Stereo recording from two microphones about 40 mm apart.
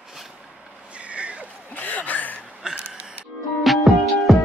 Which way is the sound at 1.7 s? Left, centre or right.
Left.